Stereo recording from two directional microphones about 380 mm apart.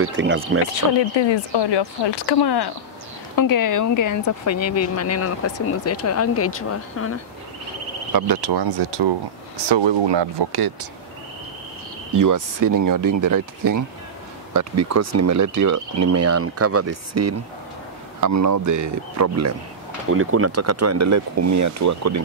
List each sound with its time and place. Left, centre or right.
0.0 s speech: right
0.9 s speech: left
3.3 s speech: left
8.1 s speech: right
12.1 s speech: right
20.1 s speech: right